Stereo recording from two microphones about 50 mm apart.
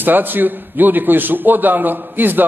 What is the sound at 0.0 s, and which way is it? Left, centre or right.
A man's voice, right.